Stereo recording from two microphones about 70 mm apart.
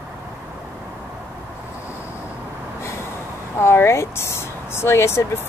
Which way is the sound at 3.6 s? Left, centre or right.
Left.